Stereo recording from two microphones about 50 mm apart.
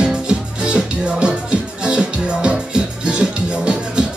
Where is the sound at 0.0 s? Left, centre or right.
Centre.